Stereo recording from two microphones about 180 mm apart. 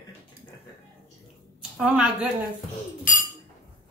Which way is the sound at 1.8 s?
5° right (ahead or behind).